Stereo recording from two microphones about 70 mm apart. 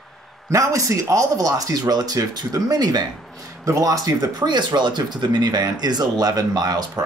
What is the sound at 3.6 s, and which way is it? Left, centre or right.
Speech, right.